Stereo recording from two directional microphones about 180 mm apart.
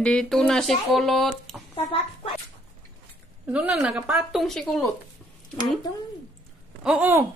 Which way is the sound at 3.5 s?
5° right (ahead or behind).